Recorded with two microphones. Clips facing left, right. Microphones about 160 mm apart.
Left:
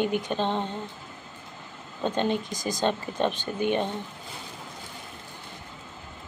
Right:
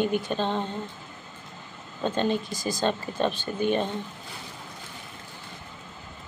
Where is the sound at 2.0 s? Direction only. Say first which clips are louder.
Even; 20° left (ahead or behind).